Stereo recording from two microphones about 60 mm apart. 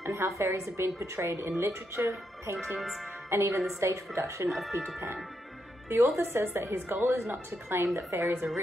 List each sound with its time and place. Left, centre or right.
0.0 s a woman's voice: right
2.0 s speech: right
3.3 s a woman's voice: right
4.5 s speech: centre
5.9 s a woman's voice: right
7.9 s a woman's voice: right